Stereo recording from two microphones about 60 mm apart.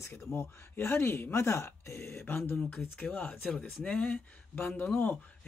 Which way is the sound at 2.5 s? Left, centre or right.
Left.